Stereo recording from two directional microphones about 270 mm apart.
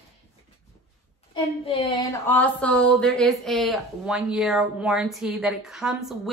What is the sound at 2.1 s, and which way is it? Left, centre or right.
A woman's voice, centre.